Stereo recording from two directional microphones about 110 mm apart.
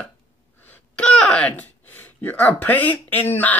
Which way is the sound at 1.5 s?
20° left (ahead or behind).